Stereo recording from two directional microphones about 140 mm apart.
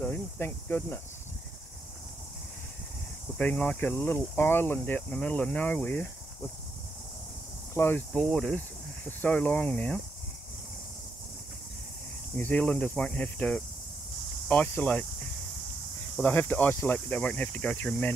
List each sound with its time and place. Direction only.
0.0 s speech: 15° left (ahead or behind)
3.3 s speech: 10° left (ahead or behind)
7.7 s speech: 15° left (ahead or behind)
8.1 s speech: 5° left (ahead or behind)
12.4 s speech: 10° left (ahead or behind)
16.2 s speech: 10° left (ahead or behind)